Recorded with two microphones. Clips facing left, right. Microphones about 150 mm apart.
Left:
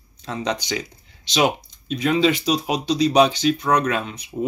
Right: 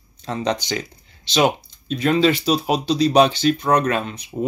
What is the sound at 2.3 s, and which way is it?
Speech, 35° right (ahead or behind).